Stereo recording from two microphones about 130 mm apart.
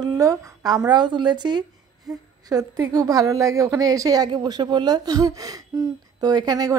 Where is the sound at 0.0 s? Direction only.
30° right (ahead or behind).